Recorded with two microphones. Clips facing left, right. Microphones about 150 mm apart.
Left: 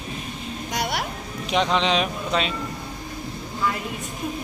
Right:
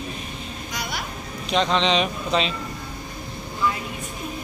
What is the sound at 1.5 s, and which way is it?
Speech, 10° left (ahead or behind).